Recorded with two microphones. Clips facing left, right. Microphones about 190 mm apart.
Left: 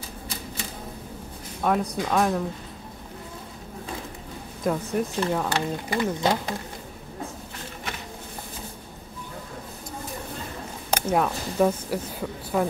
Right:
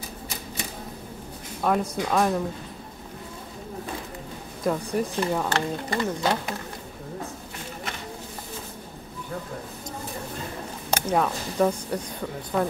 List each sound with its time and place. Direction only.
1.6 s speech: centre (ahead or behind)
4.6 s speech: centre (ahead or behind)
5.5 s speech: 15° left (ahead or behind)
10.9 s speech: 10° left (ahead or behind)